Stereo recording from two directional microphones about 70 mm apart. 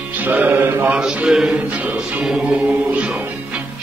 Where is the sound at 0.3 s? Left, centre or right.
Right.